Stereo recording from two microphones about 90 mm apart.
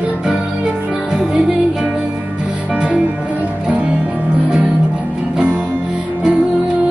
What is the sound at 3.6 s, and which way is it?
Music, 15° right (ahead or behind).